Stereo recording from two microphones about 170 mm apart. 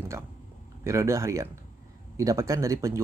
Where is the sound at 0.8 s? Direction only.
15° right (ahead or behind).